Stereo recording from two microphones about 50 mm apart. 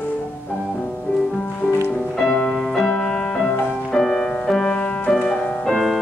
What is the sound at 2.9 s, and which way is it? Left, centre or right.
Music, centre.